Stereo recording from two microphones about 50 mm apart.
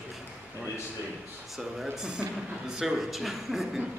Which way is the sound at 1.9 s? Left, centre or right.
Centre.